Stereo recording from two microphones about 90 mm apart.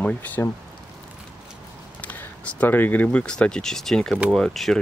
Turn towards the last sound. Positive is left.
turn(degrees=5)  # may be behind; listen again after turning